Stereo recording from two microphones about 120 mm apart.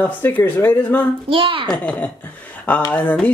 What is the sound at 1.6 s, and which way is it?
Speech, 10° left (ahead or behind).